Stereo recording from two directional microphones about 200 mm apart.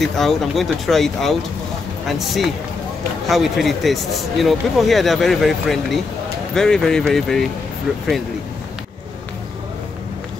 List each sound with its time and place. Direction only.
0.0 s speech: centre (ahead or behind)